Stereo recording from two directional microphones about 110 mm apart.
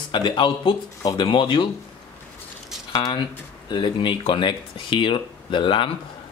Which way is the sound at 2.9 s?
45° left (ahead or behind).